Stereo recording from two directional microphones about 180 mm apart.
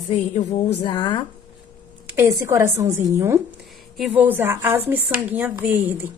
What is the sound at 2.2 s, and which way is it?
Speech, 15° right (ahead or behind).